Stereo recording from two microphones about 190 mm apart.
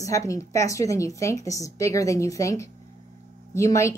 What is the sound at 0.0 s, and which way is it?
A woman's voice, 15° left (ahead or behind).